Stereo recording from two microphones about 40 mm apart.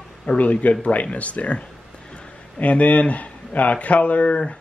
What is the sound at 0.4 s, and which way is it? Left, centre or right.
Speech, left.